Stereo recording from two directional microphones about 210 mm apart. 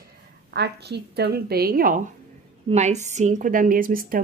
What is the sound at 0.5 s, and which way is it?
A woman's voice, 50° right (ahead or behind).